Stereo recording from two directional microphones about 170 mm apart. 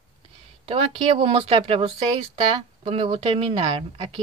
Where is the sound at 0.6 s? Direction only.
35° right (ahead or behind).